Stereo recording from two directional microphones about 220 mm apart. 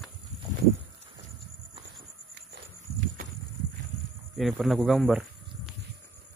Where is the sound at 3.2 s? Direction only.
40° right (ahead or behind).